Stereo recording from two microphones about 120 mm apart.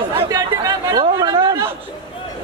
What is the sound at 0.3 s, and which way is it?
Chatter, 30° right (ahead or behind).